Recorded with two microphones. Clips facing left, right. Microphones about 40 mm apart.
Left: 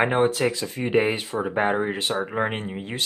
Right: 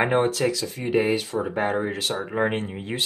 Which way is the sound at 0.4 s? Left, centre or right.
Left.